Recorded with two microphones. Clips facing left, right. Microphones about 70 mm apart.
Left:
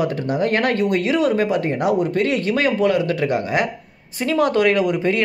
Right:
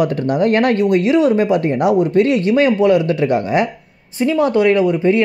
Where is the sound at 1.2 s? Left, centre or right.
Right.